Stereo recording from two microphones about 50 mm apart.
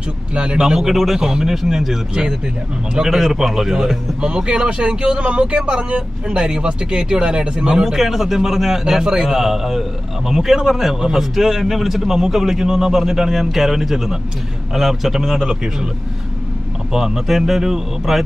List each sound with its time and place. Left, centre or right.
0.3 s a man's voice: centre
7.8 s a man's voice: centre
16.9 s a man's voice: centre